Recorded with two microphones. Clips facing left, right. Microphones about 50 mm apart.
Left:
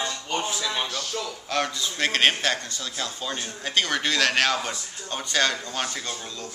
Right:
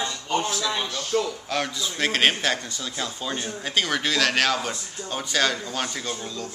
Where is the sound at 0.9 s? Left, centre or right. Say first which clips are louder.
Right 6 dB; centre.